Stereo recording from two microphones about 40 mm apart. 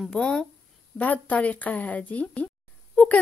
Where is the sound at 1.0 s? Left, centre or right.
Left.